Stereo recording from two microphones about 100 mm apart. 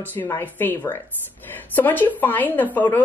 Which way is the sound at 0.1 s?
20° left (ahead or behind).